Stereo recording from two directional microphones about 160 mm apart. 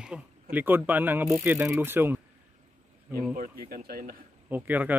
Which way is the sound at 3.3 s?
65° right (ahead or behind).